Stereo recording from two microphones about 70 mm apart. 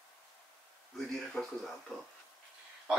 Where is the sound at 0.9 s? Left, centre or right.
Centre.